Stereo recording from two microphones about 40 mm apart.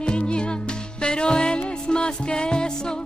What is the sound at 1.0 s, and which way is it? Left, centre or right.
Music, left.